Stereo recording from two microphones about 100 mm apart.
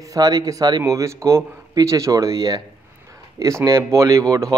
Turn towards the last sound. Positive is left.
turn(degrees=-35)  # may be behind; listen again after turning